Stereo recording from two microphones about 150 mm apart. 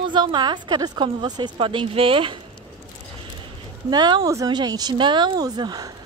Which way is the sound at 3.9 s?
30° right (ahead or behind).